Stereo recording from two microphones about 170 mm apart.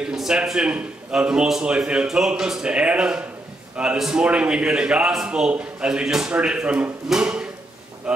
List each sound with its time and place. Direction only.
0.0 s a man's voice: 5° right (ahead or behind)